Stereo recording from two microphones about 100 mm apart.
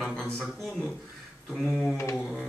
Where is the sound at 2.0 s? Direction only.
25° left (ahead or behind).